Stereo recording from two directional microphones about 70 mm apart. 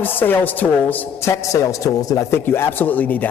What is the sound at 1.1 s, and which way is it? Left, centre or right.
A man's voice, left.